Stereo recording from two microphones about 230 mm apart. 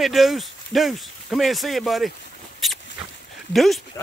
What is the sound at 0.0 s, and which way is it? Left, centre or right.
Speech, centre.